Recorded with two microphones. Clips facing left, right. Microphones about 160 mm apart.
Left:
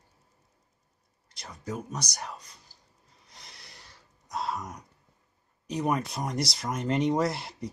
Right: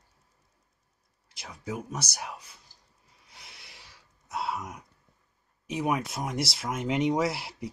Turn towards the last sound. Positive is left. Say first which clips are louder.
# even
turn(degrees=-5)  # may be behind; listen again after turning